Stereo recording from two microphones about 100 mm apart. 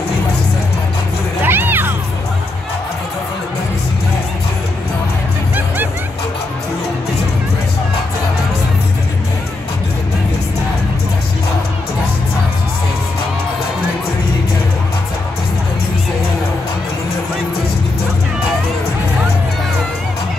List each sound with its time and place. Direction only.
1.4 s music: 20° right (ahead or behind)